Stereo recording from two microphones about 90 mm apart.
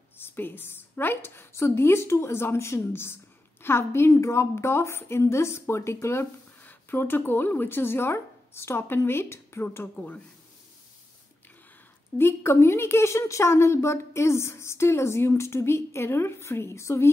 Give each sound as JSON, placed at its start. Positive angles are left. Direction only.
{"t": 0.2, "sound": "a woman's voice", "side_deg": 25}
{"t": 9.9, "sound": "speech", "side_deg": 15}
{"t": 12.2, "sound": "speech", "side_deg": 30}